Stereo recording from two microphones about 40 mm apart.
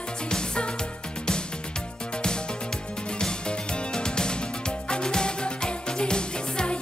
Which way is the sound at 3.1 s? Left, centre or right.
Left.